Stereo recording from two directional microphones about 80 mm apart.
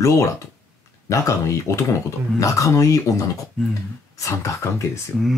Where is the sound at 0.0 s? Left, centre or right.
Left.